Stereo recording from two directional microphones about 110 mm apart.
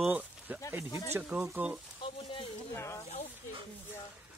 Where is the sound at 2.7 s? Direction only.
25° left (ahead or behind).